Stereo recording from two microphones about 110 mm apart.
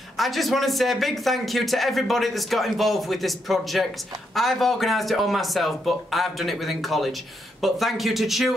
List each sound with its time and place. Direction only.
0.2 s speech: centre (ahead or behind)